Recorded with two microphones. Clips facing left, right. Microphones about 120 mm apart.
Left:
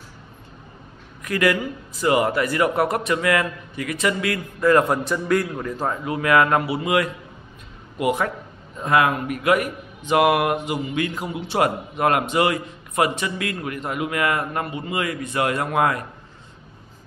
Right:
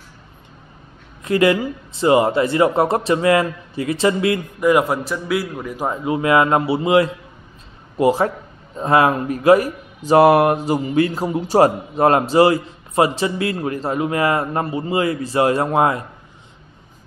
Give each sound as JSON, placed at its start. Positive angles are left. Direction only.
{"t": 1.2, "sound": "speech", "side_deg": -25}
{"t": 4.8, "sound": "speech", "side_deg": 0}